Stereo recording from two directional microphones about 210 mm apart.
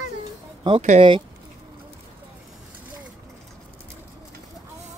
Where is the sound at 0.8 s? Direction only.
30° right (ahead or behind).